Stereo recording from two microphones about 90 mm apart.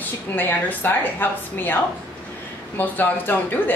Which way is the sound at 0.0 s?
20° left (ahead or behind).